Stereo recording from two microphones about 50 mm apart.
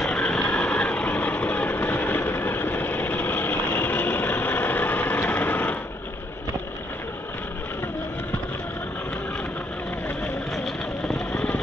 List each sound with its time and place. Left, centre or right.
0.0 s vehicle: centre; by 5.8 s left
11.3 s vehicle: left